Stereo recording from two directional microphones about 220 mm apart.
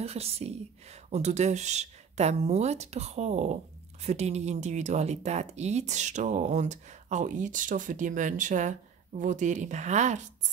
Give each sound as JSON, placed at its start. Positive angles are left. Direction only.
{"t": 0.0, "sound": "speech", "side_deg": -30}